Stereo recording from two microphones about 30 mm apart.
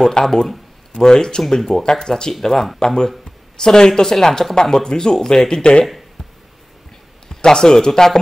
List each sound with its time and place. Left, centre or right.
0.2 s speech: centre
1.4 s speech: centre
5.6 s speech: left
7.2 s a man's voice: centre